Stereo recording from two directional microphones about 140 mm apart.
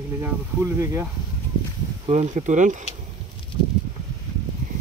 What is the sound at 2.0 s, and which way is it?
Speech, 55° right (ahead or behind).